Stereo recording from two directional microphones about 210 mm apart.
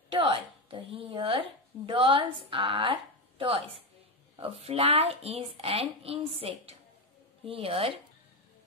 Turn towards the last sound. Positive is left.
turn(degrees=-25)  # may be behind; listen again after turning